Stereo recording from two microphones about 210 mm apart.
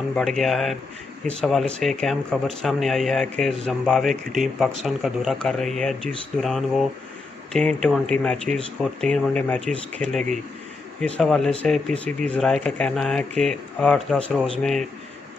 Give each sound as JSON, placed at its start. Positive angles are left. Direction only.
{"t": 0.1, "sound": "speech", "side_deg": 0}